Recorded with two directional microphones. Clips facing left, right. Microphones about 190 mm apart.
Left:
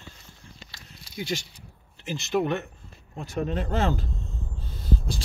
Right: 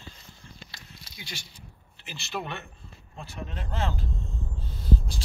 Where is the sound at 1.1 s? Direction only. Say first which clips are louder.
Left 14 dB; 40° left (ahead or behind).